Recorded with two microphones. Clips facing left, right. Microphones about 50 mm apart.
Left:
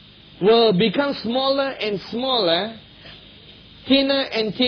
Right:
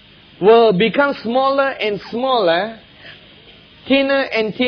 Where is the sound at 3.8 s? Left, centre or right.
Right.